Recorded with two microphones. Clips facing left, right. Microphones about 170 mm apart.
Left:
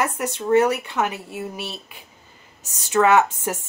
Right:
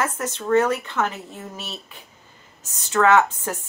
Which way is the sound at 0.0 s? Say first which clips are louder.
Left 2 dB; 15° left (ahead or behind).